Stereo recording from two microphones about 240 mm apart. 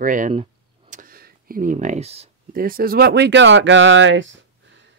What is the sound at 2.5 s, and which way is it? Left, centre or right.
Speech, right.